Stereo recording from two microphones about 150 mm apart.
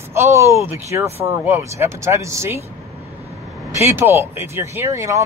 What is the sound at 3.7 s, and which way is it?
Speech, 15° right (ahead or behind).